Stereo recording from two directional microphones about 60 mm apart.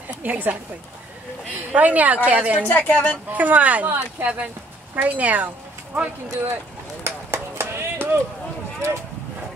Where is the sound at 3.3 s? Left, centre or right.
Right.